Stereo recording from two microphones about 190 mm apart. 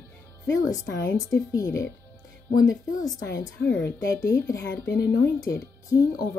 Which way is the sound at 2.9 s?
50° left (ahead or behind).